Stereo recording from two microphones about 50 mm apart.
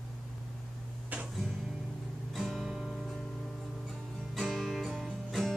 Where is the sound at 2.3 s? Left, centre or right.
Centre.